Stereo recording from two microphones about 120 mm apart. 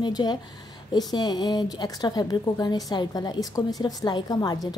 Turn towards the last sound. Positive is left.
turn(degrees=35)  # may be behind; listen again after turning